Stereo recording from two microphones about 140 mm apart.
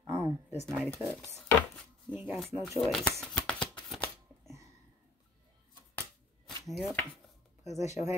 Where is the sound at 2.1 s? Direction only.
10° right (ahead or behind).